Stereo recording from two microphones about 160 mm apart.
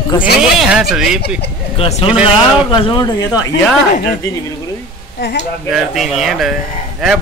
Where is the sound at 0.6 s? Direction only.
5° right (ahead or behind).